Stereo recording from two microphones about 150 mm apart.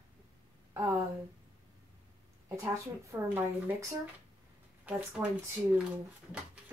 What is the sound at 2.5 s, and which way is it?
Speech, 20° right (ahead or behind).